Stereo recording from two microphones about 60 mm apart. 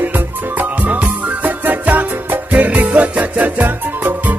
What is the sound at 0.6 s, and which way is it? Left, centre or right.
Music, right.